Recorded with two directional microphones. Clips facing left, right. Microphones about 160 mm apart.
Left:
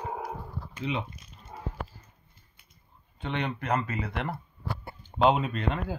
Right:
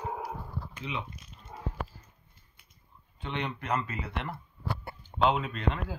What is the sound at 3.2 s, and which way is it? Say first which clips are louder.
Speech: left 3 dB; 55° left (ahead or behind).